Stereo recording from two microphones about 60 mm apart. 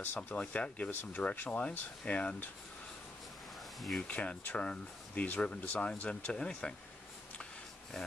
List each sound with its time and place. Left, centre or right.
0.0 s speech: left
4.1 s speech: left